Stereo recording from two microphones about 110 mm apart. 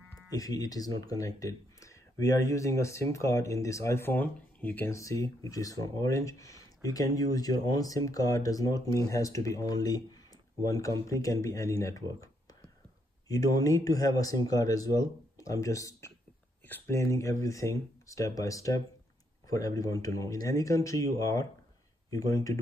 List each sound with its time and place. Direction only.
0.3 s speech: 35° left (ahead or behind)
13.3 s speech: 35° left (ahead or behind)